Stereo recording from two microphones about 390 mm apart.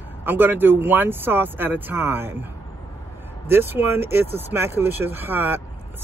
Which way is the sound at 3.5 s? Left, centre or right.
Centre.